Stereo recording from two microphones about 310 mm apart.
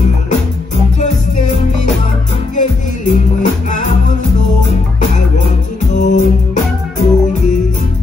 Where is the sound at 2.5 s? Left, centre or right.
Left.